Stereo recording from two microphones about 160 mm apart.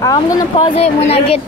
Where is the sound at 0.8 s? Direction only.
40° left (ahead or behind).